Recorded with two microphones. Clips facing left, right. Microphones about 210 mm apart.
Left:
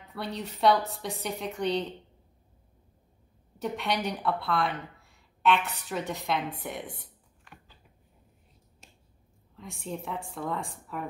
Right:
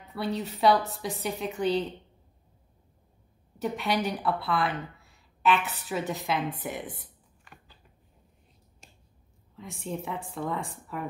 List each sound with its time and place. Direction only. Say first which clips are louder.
0.1 s a woman's voice: right 4 dB; centre (ahead or behind)
3.5 s speech: right 2 dB; centre (ahead or behind)
9.6 s a woman's voice: right 2 dB; centre (ahead or behind)